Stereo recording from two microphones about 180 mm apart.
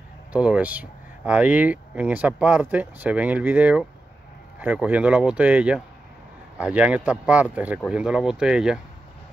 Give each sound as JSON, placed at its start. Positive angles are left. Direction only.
{"t": 0.3, "sound": "speech", "side_deg": -5}